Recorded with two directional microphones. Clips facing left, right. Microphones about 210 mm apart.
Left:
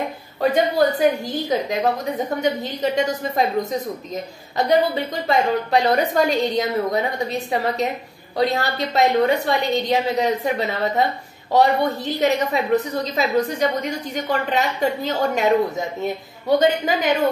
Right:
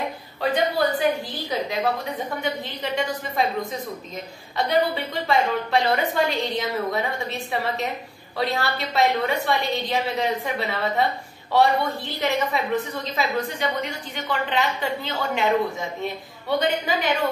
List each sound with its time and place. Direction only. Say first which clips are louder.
0.4 s a woman's voice: left 4 dB; 45° left (ahead or behind)